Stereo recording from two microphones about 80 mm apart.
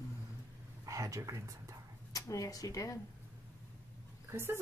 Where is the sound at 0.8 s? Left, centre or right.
Right.